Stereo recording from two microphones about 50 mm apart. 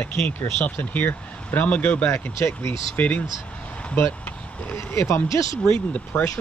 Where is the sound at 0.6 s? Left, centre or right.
Left.